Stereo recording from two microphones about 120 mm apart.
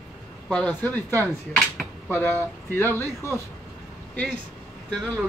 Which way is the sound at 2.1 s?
15° left (ahead or behind).